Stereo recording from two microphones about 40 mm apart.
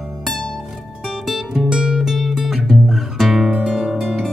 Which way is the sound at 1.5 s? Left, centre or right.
Centre.